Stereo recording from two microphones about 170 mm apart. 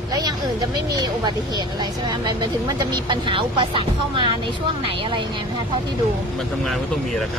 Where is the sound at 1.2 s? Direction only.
25° right (ahead or behind).